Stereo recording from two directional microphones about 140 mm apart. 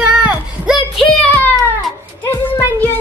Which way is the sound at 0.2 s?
10° right (ahead or behind).